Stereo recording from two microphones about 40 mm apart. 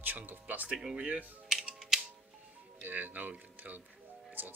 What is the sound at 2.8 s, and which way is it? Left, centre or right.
Speech, right.